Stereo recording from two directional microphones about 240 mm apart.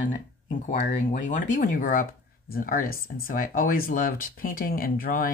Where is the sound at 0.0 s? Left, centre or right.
Left.